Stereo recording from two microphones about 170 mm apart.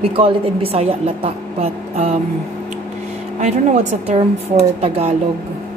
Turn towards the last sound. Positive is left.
turn(degrees=-35)  # may be behind; listen again after turning